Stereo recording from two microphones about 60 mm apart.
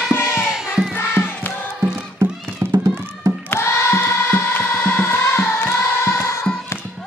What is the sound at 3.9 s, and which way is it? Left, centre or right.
Choir, left.